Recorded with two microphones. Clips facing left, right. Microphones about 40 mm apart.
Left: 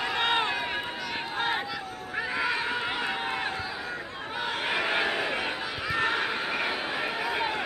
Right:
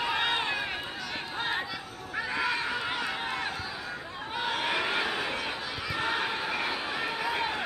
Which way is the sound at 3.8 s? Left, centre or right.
Left.